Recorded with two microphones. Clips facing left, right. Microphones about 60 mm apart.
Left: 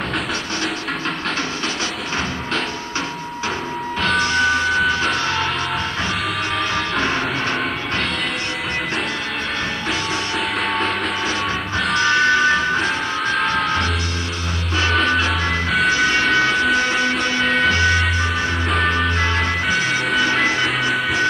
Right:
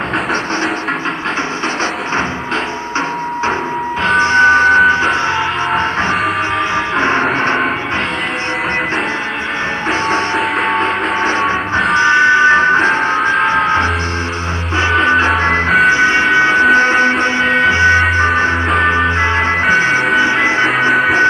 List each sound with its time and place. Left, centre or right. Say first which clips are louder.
4.2 s music: right 11 dB; right
9.8 s music: right 11 dB; right
15.0 s music: right 7 dB; right
16.7 s a sound: right 8 dB; right
17.6 s music: right 7 dB; right